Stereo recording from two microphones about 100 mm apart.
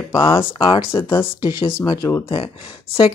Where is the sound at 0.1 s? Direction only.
65° left (ahead or behind).